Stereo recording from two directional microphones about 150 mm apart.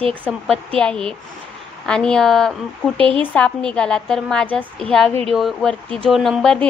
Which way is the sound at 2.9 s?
35° right (ahead or behind).